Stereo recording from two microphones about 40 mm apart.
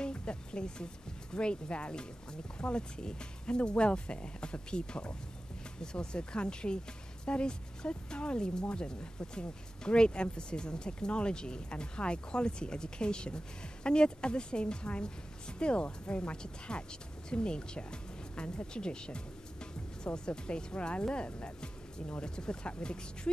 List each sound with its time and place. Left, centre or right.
0.0 s a sound: left
1.3 s speech: left
18.7 s music: left
20.2 s speech: left
21.3 s music: left
22.2 s speech: left